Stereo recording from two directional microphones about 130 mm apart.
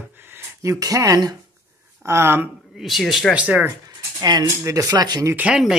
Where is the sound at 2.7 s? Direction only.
Centre (ahead or behind).